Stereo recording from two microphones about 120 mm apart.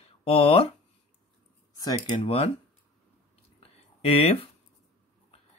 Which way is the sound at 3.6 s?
55° left (ahead or behind).